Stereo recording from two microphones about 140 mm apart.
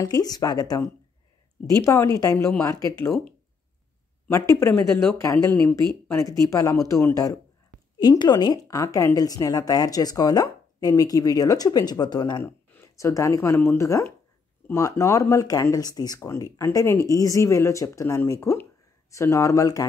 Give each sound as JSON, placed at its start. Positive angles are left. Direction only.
{"t": 0.0, "sound": "speech", "side_deg": 25}
{"t": 4.3, "sound": "speech", "side_deg": 20}
{"t": 6.5, "sound": "speech", "side_deg": 25}
{"t": 12.4, "sound": "speech", "side_deg": 20}